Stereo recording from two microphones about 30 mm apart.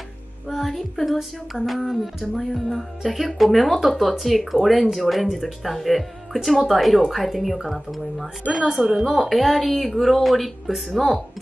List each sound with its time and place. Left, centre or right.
0.5 s music: centre
1.5 s speech: centre
8.5 s a woman's voice: centre
9.3 s speech: centre